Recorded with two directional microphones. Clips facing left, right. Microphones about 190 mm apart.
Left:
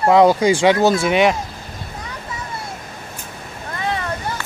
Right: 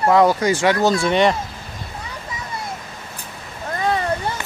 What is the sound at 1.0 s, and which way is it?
Speech, 5° left (ahead or behind).